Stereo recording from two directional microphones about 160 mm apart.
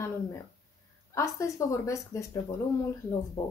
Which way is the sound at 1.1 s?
20° left (ahead or behind).